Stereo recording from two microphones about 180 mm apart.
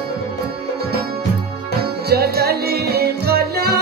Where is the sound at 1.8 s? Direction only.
60° right (ahead or behind).